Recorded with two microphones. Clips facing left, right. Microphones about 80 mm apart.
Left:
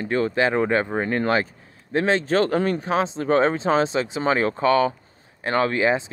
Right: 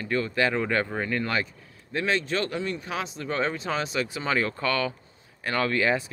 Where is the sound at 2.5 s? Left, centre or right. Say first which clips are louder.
Left 9 dB; left.